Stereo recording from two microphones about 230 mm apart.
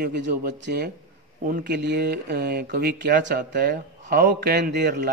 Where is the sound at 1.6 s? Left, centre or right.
Right.